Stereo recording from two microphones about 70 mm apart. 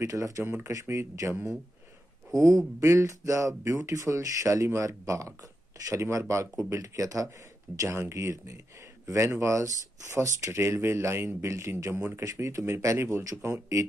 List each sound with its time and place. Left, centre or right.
0.0 s speech: right
2.3 s speech: right
13.2 s speech: right